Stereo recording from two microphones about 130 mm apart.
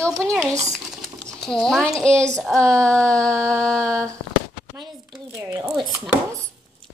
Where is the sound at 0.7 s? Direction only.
Centre (ahead or behind).